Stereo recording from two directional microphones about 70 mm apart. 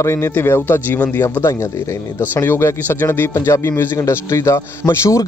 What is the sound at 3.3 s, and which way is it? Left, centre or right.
A man's voice, left.